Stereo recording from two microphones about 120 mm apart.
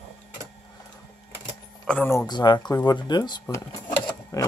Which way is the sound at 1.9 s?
5° left (ahead or behind).